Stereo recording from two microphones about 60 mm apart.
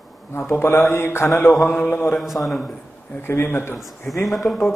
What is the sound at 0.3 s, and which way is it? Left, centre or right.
A man's voice, left.